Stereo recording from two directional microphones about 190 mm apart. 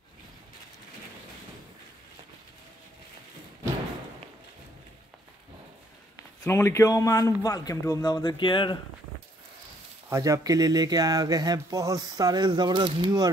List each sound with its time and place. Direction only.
6.1 s a man's voice: 15° left (ahead or behind)
10.0 s speech: 15° right (ahead or behind)